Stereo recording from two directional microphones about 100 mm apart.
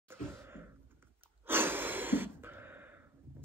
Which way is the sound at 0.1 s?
25° right (ahead or behind).